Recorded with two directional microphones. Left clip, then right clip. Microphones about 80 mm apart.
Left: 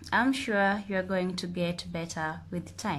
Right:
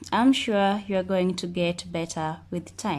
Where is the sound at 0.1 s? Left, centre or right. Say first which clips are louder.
Right 4 dB; right.